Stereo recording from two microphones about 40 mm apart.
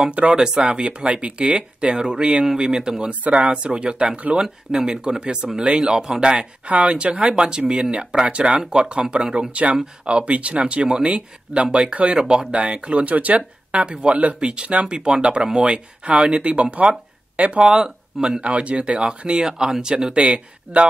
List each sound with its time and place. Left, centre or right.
0.1 s speech: right
0.4 s speech: centre
4.4 s speech: centre
6.7 s speech: right
13.0 s speech: right
13.7 s speech: right
18.4 s speech: right